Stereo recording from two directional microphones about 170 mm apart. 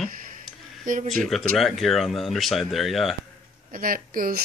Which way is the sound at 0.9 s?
50° right (ahead or behind).